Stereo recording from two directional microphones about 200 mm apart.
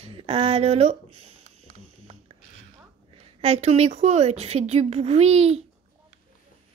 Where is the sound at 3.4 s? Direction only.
30° right (ahead or behind).